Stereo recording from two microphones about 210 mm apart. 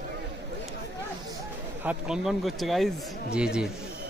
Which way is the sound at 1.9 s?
5° right (ahead or behind).